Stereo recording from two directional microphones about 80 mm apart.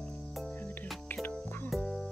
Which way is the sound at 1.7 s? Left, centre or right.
Centre.